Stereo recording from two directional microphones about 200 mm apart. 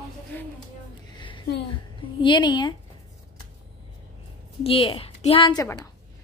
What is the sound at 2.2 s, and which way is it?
Speech, 25° left (ahead or behind).